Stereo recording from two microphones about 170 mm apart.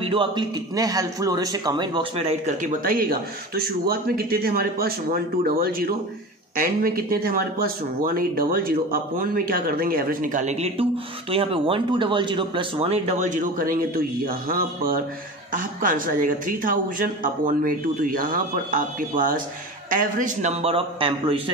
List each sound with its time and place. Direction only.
0.0 s a man's voice: 30° right (ahead or behind); by 20.5 s 50° right (ahead or behind)
20.6 s a man's voice: 35° right (ahead or behind)